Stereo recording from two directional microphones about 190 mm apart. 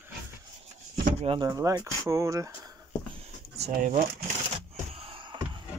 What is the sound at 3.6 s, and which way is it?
Speech, 40° right (ahead or behind).